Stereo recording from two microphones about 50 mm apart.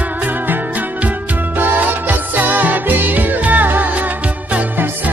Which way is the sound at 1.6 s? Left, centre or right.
Right.